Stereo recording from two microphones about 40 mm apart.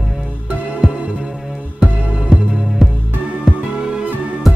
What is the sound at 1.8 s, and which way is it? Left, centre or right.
Music, right.